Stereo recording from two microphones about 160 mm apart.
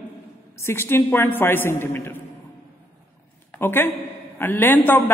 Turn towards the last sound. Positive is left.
turn(degrees=10)  # may be behind; listen again after turning